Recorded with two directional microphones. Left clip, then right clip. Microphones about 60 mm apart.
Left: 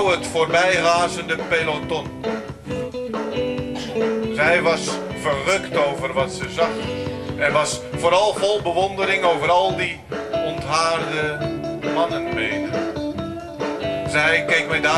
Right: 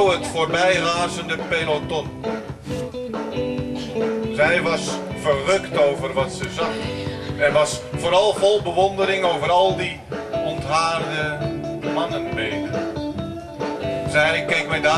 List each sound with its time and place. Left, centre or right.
0.0 s speech: left
3.3 s music: left
7.3 s speech: left
10.3 s music: left
14.1 s speech: left